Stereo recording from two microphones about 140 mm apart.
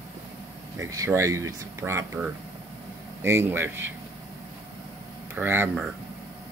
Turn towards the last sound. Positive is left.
turn(degrees=-15)  # may be behind; listen again after turning